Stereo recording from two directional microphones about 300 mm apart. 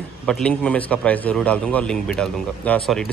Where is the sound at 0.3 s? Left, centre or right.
Centre.